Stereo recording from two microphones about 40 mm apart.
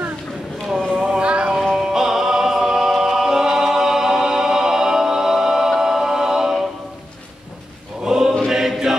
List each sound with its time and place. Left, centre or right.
1.0 s a sound: right
1.8 s music: centre
8.0 s choir: centre